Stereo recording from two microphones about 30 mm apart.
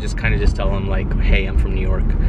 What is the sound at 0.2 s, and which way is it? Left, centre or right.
Speech, centre.